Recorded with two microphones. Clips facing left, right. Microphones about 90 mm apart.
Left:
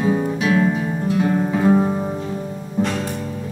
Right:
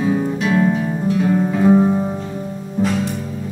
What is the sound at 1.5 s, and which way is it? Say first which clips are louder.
Music: right 4 dB; 5° left (ahead or behind).